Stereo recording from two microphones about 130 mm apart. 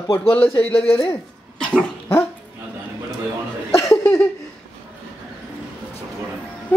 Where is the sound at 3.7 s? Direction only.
20° left (ahead or behind).